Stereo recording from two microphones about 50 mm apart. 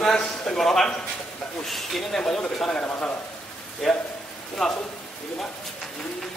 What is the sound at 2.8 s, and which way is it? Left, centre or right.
Speech, left.